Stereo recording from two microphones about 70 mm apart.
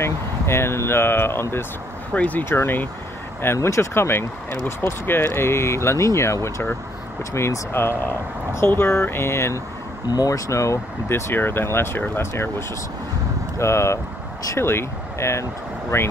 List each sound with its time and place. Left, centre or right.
0.0 s speech: left
2.1 s speech: left
3.6 s speech: left
10.0 s speech: left
11.1 s speech: left